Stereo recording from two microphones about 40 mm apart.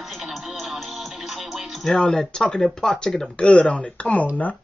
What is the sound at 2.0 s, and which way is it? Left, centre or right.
Speech, centre.